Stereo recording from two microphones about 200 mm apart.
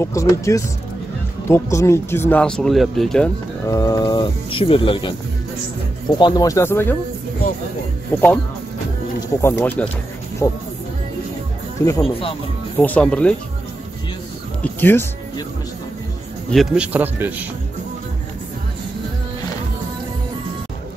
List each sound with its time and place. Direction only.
0.0 s speech: 15° left (ahead or behind)
3.6 s speech: 15° left (ahead or behind)
6.1 s speech: 20° left (ahead or behind)
8.1 s speech: 10° left (ahead or behind)
9.4 s speech: 10° left (ahead or behind)
12.0 s speech: 30° left (ahead or behind)
12.7 s speech: 10° left (ahead or behind)
14.6 s speech: 10° left (ahead or behind)
16.4 s speech: centre (ahead or behind)